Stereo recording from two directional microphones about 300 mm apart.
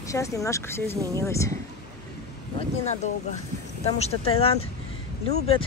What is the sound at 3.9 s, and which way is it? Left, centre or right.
Speech, centre.